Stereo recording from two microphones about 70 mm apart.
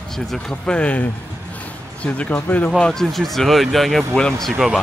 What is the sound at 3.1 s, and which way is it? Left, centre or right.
Speech, centre.